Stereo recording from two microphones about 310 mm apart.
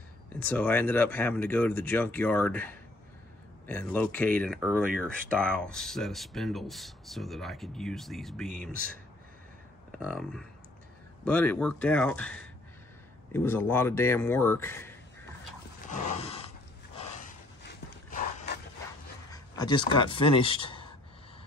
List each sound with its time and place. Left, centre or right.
0.5 s speech: centre
4.6 s speech: centre
5.3 s speech: centre
9.9 s speech: centre
15.9 s a sound: centre
17.6 s a sound: left
19.3 s speech: centre